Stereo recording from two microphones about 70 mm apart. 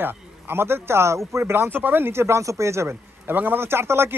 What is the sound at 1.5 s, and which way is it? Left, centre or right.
Speech, right.